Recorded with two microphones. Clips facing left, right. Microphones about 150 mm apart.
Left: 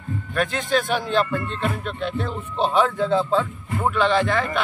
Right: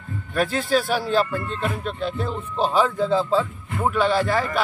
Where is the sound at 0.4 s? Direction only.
5° right (ahead or behind).